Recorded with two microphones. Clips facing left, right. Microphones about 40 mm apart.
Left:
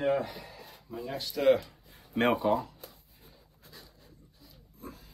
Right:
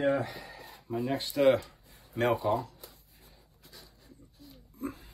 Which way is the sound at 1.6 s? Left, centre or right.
Left.